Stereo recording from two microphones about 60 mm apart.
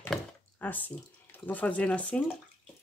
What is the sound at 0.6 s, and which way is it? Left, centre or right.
Speech, left.